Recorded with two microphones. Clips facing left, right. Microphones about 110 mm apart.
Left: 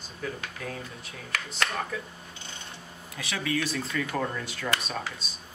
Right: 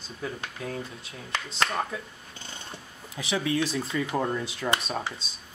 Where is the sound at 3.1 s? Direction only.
20° right (ahead or behind).